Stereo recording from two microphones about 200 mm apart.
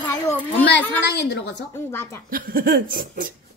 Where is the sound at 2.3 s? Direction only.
45° right (ahead or behind).